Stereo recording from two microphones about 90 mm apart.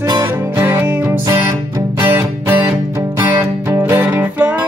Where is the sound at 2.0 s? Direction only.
20° right (ahead or behind).